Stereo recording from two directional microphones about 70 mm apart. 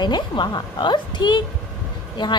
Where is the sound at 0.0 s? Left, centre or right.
Left.